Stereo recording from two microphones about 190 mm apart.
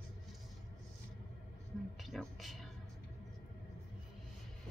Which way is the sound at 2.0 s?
Centre (ahead or behind).